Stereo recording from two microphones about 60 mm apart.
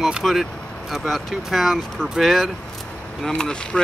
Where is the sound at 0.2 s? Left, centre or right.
Centre.